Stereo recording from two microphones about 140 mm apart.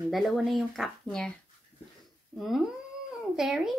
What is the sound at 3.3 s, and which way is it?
Speech, 5° right (ahead or behind).